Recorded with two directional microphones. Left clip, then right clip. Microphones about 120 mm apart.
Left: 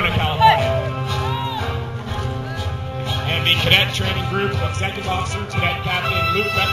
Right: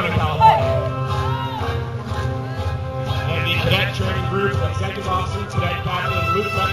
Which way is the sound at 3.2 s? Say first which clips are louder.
Left 5 dB; 20° left (ahead or behind).